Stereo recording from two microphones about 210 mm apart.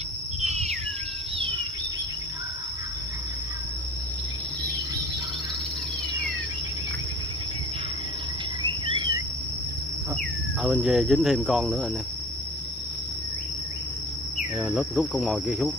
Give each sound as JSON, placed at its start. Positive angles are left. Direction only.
{"t": 0.4, "sound": "bird", "side_deg": -30}
{"t": 8.6, "sound": "cricket", "side_deg": -20}
{"t": 10.6, "sound": "speech", "side_deg": -5}
{"t": 14.6, "sound": "speech", "side_deg": -5}